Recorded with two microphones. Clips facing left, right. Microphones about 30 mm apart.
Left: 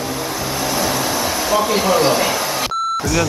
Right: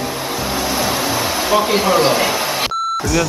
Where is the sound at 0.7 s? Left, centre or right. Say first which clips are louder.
Even; centre.